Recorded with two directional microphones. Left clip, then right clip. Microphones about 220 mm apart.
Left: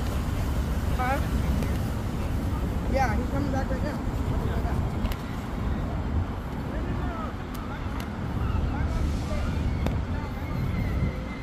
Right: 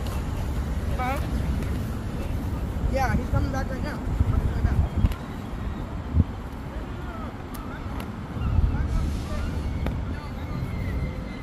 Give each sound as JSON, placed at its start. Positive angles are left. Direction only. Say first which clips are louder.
{"t": 2.9, "sound": "vehicle", "louder": "even", "side_deg": -30}